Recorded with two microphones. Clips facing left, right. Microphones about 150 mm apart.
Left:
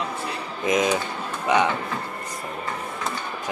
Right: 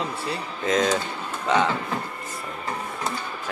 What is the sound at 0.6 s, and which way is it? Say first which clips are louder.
Speech: left 1 dB; 15° left (ahead or behind).